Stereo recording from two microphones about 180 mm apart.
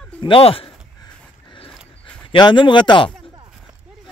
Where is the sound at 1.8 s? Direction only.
5° left (ahead or behind).